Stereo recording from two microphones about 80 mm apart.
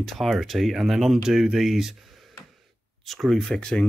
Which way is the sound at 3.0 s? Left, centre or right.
Centre.